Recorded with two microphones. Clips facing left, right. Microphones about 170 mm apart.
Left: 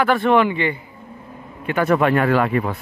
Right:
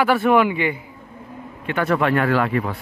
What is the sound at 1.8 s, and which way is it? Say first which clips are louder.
Speech: left 2 dB; 20° left (ahead or behind).